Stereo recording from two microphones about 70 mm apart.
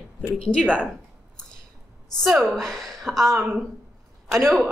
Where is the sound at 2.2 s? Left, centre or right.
Centre.